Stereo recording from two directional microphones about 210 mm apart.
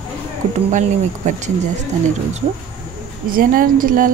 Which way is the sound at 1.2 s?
35° right (ahead or behind).